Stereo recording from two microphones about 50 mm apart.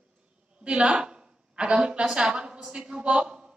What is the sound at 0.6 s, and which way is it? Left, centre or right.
A woman's voice, centre.